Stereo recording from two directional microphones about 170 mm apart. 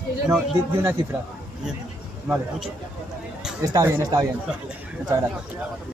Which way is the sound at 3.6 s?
20° right (ahead or behind).